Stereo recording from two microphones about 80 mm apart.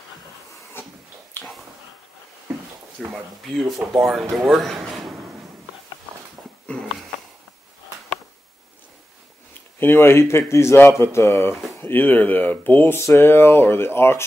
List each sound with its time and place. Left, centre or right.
1.4 s a sound: left
3.0 s speech: centre
9.5 s speech: left